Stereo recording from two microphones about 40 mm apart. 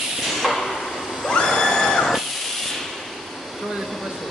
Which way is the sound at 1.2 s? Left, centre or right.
Centre.